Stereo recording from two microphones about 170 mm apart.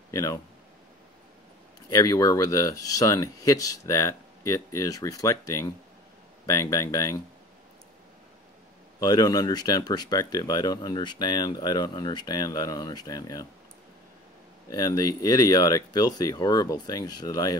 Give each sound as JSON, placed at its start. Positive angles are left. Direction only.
{"t": 0.1, "sound": "speech", "side_deg": 20}
{"t": 1.9, "sound": "speech", "side_deg": 20}
{"t": 9.0, "sound": "speech", "side_deg": 20}
{"t": 14.7, "sound": "speech", "side_deg": 20}